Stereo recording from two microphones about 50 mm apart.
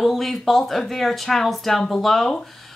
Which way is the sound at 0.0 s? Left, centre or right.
Centre.